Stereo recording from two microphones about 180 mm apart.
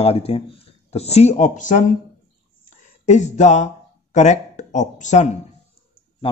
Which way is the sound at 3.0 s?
40° left (ahead or behind).